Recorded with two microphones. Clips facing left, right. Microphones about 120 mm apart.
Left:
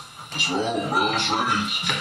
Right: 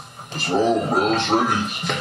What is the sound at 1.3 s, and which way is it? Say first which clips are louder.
Speech: right 5 dB; 70° left (ahead or behind).